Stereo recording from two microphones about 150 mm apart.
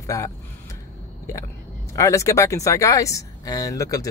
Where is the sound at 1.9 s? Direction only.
20° left (ahead or behind).